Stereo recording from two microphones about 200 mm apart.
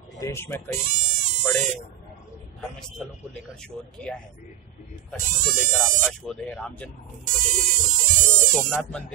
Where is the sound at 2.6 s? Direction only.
Centre (ahead or behind).